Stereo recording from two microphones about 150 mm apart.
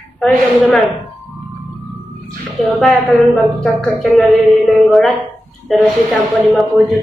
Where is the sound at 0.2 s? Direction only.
5° left (ahead or behind).